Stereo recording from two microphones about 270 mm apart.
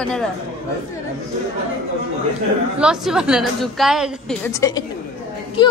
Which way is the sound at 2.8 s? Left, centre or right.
Centre.